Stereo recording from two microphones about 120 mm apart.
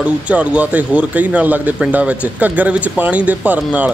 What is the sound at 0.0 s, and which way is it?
Speech, 10° right (ahead or behind).